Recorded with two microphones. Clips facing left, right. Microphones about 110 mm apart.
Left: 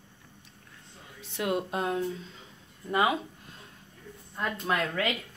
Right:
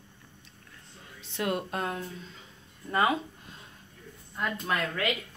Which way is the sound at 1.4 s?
15° left (ahead or behind).